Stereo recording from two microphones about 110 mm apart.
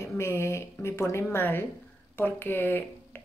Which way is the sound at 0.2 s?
25° left (ahead or behind).